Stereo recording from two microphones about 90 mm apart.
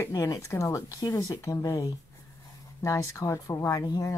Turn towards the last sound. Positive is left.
turn(degrees=45)  # may be behind; listen again after turning